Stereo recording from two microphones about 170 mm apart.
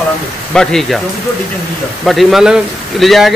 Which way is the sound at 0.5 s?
5° left (ahead or behind).